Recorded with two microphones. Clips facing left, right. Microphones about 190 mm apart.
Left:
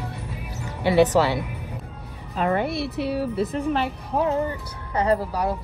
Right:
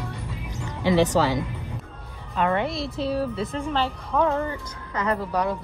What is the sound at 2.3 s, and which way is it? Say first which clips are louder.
Speech: left 1 dB; 35° left (ahead or behind).